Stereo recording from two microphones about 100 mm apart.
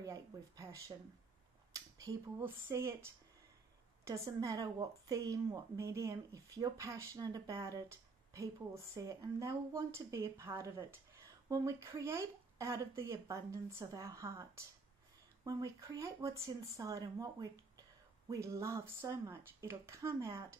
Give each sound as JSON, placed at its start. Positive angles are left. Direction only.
{"t": 0.0, "sound": "a woman's voice", "side_deg": -35}
{"t": 1.7, "sound": "a sound", "side_deg": -35}
{"t": 2.7, "sound": "a woman's voice", "side_deg": -30}